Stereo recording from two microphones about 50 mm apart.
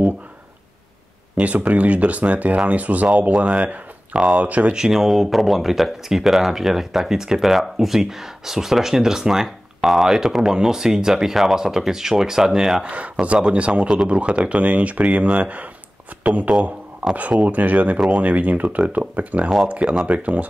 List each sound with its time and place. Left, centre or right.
1.3 s speech: right
4.7 s speech: centre
12.8 s speech: right